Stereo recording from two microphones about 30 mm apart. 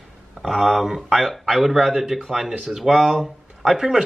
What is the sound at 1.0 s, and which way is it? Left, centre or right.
Speech, centre.